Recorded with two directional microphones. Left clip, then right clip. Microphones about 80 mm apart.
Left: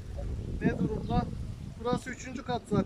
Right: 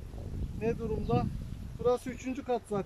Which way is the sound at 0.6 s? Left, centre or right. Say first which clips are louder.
Even; right.